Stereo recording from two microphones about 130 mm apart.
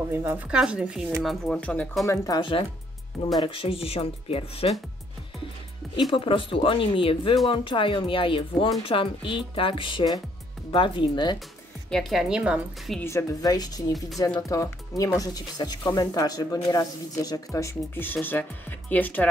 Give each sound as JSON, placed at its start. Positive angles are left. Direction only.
{"t": 0.1, "sound": "a woman's voice", "side_deg": -15}
{"t": 2.0, "sound": "speech", "side_deg": 25}
{"t": 3.3, "sound": "speech", "side_deg": 40}
{"t": 6.1, "sound": "speech", "side_deg": 40}
{"t": 11.9, "sound": "a woman's voice", "side_deg": 0}
{"t": 13.0, "sound": "speech", "side_deg": 25}
{"t": 13.9, "sound": "a woman's voice", "side_deg": 0}
{"t": 14.5, "sound": "speech", "side_deg": 25}